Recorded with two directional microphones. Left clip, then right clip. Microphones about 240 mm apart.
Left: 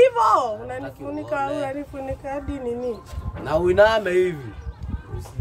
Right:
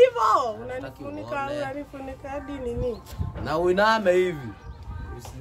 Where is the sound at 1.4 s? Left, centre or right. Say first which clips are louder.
Left 4 dB; centre.